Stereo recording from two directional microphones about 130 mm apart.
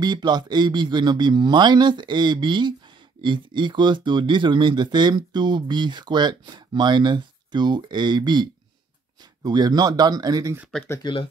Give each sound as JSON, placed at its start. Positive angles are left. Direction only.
{"t": 0.0, "sound": "speech", "side_deg": -35}
{"t": 10.7, "sound": "speech", "side_deg": 5}